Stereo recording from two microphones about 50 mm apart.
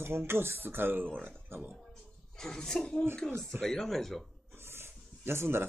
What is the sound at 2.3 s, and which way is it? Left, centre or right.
Speech, centre.